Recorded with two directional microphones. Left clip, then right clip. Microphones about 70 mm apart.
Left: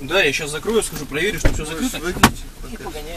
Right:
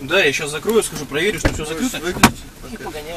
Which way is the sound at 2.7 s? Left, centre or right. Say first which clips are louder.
Right 2 dB; centre.